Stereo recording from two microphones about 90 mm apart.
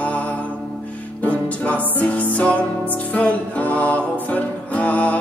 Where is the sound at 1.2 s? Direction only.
15° left (ahead or behind).